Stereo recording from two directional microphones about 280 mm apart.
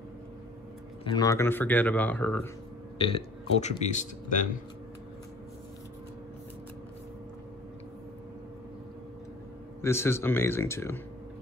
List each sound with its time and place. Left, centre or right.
1.0 s speech: centre
3.0 s speech: centre
9.8 s speech: centre